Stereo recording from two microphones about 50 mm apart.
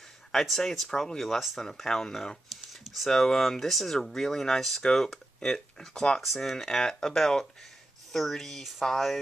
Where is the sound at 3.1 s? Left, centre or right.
Centre.